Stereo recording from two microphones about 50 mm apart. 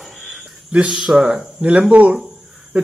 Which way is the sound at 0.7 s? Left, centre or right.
Right.